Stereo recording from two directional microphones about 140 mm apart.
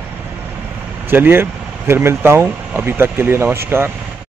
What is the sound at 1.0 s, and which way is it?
Speech, 15° right (ahead or behind).